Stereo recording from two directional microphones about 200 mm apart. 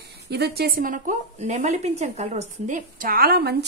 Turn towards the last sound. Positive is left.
turn(degrees=-55)  # may be behind; listen again after turning